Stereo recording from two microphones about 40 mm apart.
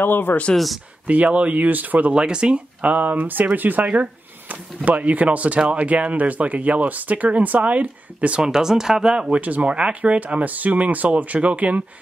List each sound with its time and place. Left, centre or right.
0.0 s speech: left
1.0 s speech: right
2.1 s speech: right
2.8 s speech: right
3.8 s speech: right
8.4 s speech: centre
9.4 s speech: right